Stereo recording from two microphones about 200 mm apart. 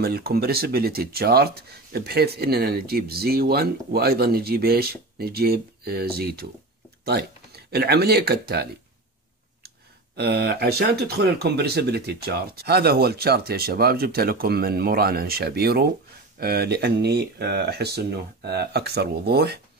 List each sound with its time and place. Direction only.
0.0 s speech: 50° right (ahead or behind)
10.1 s speech: 55° right (ahead or behind)